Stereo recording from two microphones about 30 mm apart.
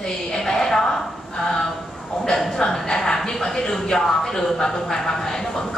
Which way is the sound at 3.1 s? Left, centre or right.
Centre.